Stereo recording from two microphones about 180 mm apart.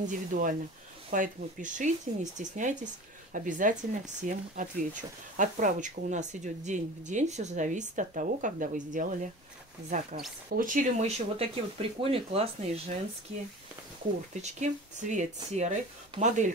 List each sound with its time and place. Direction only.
0.0 s speech: 45° right (ahead or behind)
14.4 s speech: 40° right (ahead or behind)